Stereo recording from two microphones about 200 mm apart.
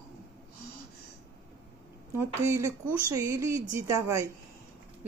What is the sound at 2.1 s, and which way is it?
Speech, 15° right (ahead or behind).